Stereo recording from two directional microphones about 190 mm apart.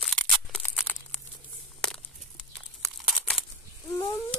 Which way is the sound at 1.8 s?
Centre (ahead or behind).